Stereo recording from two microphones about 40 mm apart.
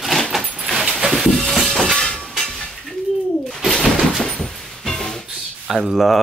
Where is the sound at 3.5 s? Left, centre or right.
Centre.